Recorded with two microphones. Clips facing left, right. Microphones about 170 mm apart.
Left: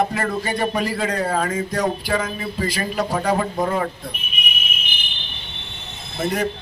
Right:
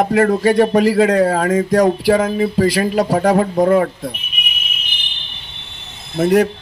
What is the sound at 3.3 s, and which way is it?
Speech, 50° right (ahead or behind).